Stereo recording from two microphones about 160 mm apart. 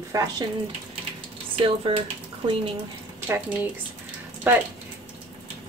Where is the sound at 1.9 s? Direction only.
35° right (ahead or behind).